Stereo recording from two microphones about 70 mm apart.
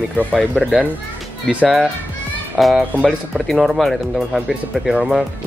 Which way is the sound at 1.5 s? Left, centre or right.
Centre.